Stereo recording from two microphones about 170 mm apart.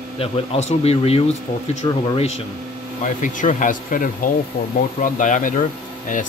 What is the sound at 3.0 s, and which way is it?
Speech, 50° left (ahead or behind).